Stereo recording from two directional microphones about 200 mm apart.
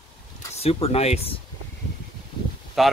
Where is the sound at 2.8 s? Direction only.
Centre (ahead or behind).